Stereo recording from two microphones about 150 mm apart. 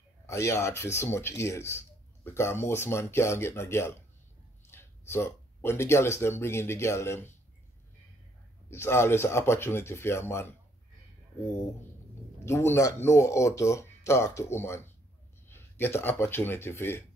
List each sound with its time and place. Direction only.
0.3 s speech: 20° left (ahead or behind)
8.6 s speech: 15° left (ahead or behind)
12.4 s speech: 20° left (ahead or behind)